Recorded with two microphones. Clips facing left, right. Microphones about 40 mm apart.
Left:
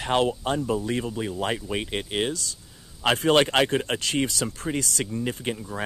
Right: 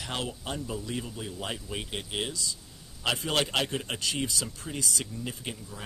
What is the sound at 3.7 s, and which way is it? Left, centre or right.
Speech, left.